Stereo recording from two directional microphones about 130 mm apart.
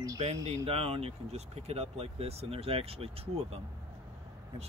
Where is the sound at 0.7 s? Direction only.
50° right (ahead or behind).